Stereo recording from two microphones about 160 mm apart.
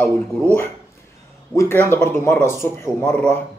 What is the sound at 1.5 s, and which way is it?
Speech, 20° left (ahead or behind).